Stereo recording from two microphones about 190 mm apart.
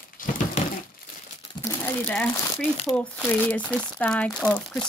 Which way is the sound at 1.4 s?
20° left (ahead or behind).